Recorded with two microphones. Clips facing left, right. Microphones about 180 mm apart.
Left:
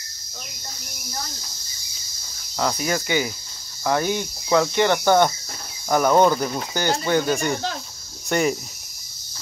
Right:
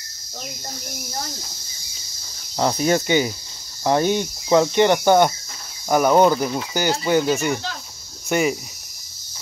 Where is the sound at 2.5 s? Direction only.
25° right (ahead or behind); by 8.5 s 5° right (ahead or behind).